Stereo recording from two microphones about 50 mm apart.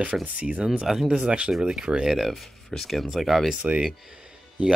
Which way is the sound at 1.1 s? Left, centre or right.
Right.